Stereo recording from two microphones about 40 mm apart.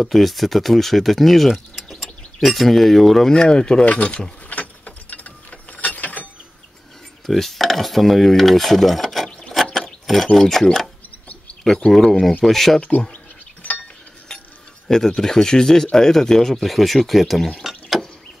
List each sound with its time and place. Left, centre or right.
0.0 s speech: centre
3.3 s speech: centre
3.8 s speech: left
4.5 s mechanisms: left
7.2 s speech: centre
11.9 s speech: centre
13.1 s a sound: left
14.9 s speech: centre
17.6 s a sound: centre